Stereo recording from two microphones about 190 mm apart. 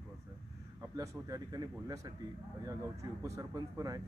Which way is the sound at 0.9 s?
20° right (ahead or behind).